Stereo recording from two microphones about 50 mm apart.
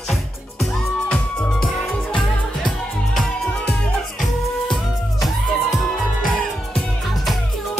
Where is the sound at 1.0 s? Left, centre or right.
Centre.